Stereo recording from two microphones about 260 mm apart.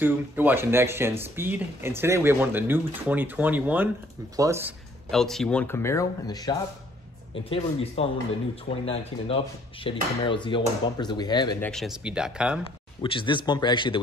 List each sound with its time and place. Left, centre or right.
0.0 s speech: centre
5.1 s dishes: centre
7.4 s speech: left
8.8 s dishes: left
11.7 s speech: centre
12.6 s dishes: centre